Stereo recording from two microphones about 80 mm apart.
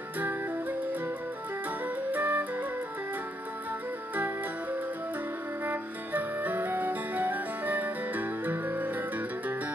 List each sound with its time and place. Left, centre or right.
0.2 s music: right
2.1 s flute: right
5.7 s music: right